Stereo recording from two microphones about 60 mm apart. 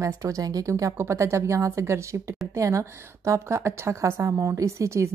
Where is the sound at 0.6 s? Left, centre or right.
Right.